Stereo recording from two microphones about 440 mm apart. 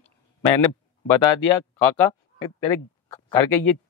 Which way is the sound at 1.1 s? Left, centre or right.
Left.